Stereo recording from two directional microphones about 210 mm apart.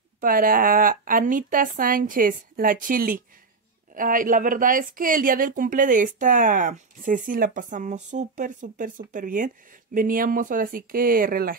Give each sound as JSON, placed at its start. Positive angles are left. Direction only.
{"t": 0.2, "sound": "speech", "side_deg": -40}